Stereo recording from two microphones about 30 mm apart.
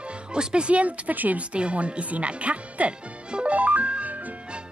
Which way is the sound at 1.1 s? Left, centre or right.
Right.